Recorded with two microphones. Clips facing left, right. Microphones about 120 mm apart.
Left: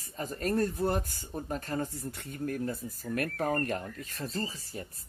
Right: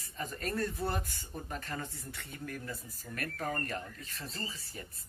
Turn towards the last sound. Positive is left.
turn(degrees=45)  # may be behind; listen again after turning